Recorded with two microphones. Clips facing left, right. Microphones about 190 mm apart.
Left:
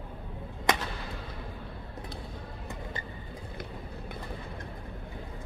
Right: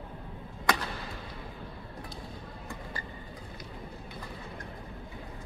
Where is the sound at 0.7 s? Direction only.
20° left (ahead or behind).